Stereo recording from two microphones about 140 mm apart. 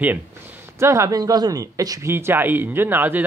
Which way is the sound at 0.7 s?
20° right (ahead or behind).